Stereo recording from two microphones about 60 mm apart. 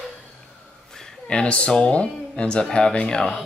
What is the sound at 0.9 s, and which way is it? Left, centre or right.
Speech, centre.